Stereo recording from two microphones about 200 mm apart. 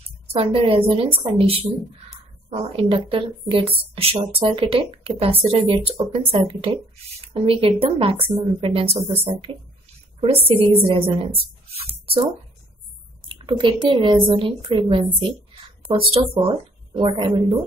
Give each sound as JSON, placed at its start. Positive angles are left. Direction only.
{"t": 0.3, "sound": "a woman's voice", "side_deg": -30}
{"t": 13.3, "sound": "a woman's voice", "side_deg": -25}